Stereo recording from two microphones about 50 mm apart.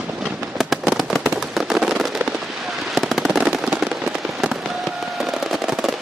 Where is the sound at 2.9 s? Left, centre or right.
Centre.